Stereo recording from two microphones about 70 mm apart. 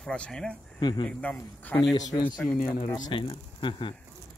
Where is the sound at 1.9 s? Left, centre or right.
Left.